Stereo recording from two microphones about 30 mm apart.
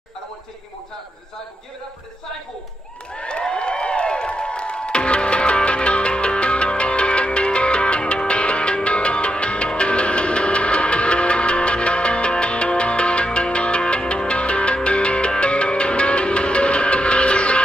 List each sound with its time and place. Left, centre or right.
3.2 s music: left